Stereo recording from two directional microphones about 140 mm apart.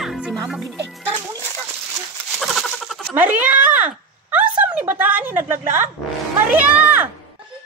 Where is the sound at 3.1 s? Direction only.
10° right (ahead or behind).